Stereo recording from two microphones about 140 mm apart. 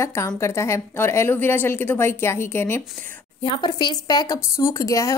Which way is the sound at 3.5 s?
30° left (ahead or behind).